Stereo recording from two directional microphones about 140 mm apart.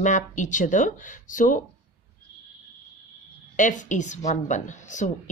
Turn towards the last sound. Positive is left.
turn(degrees=60)  # may be behind; listen again after turning